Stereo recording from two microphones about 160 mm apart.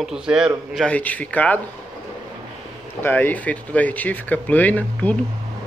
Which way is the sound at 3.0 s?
10° left (ahead or behind).